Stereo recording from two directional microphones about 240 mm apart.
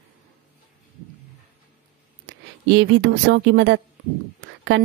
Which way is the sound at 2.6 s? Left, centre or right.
Right.